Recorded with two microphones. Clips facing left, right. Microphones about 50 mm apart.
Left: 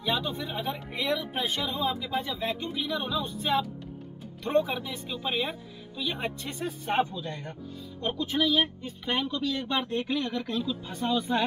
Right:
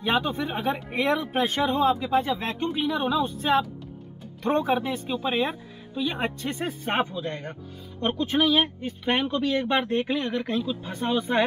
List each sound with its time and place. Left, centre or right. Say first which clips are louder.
0.0 s speech: right 5 dB; right
3.0 s speech: right 6 dB; right